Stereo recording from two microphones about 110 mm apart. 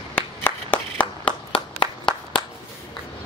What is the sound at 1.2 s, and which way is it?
Clapping, 55° left (ahead or behind).